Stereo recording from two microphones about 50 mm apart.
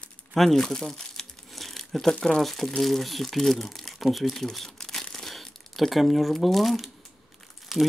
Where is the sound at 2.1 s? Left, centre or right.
Centre.